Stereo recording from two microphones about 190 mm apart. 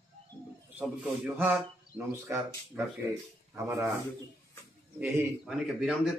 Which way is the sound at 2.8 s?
5° right (ahead or behind).